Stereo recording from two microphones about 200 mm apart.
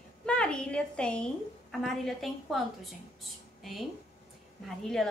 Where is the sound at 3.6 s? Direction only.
Centre (ahead or behind).